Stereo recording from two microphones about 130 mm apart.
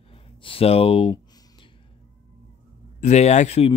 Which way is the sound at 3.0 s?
60° left (ahead or behind).